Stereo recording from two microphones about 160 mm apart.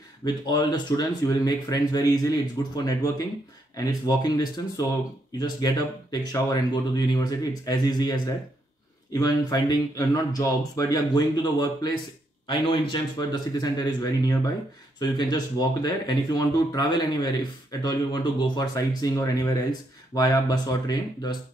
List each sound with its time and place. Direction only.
0.2 s speech: 25° left (ahead or behind)
4.1 s speech: 25° left (ahead or behind)
9.2 s speech: 25° left (ahead or behind)